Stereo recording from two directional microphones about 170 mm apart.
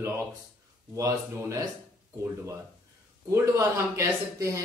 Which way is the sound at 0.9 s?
20° right (ahead or behind).